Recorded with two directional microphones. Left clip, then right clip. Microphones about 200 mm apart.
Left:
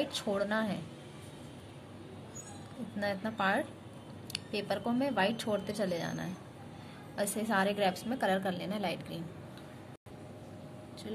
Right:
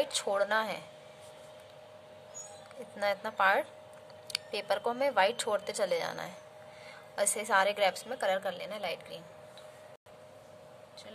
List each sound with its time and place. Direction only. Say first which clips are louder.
0.0 s speech: right 3 dB; 25° right (ahead or behind)
3.0 s speech: right 4 dB; 20° right (ahead or behind)
7.3 s a woman's voice: right 3 dB; 20° right (ahead or behind); by 9.2 s 5° right (ahead or behind)